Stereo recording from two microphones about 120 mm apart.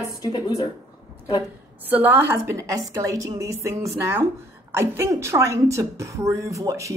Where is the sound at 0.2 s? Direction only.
35° left (ahead or behind).